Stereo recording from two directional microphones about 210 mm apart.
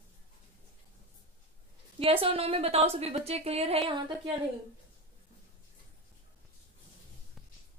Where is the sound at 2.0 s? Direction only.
25° right (ahead or behind).